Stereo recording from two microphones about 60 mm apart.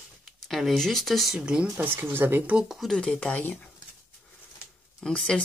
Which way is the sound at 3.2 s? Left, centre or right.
Left.